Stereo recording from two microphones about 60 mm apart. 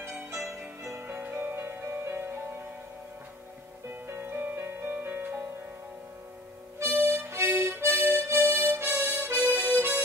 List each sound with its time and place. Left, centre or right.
0.3 s music: right
3.9 s music: right
6.8 s harmonica: right